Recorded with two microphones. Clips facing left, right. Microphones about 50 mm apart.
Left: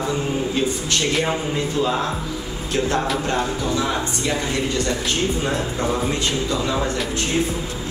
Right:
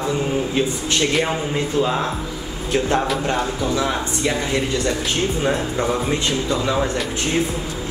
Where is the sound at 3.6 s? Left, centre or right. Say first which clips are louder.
Right 1 dB; centre.